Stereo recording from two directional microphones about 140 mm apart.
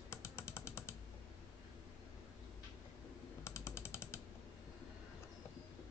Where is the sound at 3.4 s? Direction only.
20° left (ahead or behind).